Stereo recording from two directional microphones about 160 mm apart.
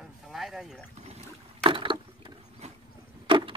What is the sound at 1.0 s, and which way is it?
Boat, 40° right (ahead or behind).